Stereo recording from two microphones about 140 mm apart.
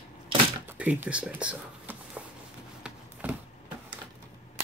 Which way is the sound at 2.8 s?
10° right (ahead or behind).